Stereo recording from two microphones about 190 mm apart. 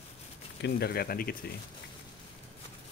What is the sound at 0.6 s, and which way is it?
Speech, 55° left (ahead or behind).